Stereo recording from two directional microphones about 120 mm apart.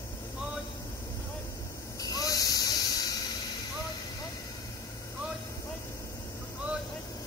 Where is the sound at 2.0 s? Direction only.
30° left (ahead or behind).